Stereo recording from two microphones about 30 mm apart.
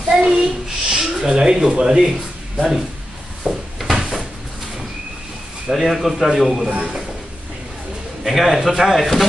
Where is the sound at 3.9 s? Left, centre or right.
Right.